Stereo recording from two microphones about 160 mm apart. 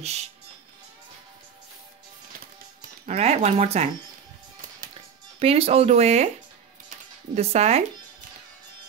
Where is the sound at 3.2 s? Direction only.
45° right (ahead or behind).